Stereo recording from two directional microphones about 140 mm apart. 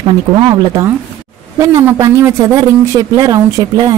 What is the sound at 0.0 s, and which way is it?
Speech, 35° right (ahead or behind).